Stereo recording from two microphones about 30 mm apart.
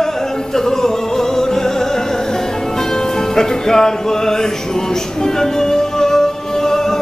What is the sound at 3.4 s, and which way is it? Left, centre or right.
Music, centre.